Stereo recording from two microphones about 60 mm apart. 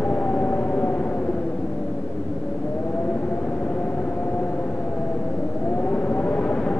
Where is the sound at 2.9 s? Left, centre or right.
Left.